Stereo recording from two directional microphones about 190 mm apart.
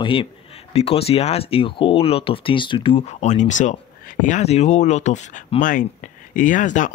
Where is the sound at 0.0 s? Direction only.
30° left (ahead or behind).